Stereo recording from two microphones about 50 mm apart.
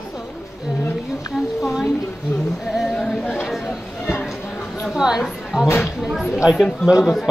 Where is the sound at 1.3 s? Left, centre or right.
Centre.